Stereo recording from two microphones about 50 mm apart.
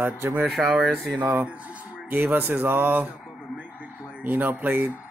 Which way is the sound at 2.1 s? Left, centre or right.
Right.